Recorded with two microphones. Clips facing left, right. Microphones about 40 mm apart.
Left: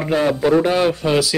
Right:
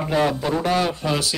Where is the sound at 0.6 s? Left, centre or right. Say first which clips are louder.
Left 4 dB; left.